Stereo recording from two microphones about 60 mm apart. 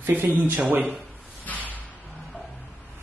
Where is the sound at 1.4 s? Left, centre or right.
Left.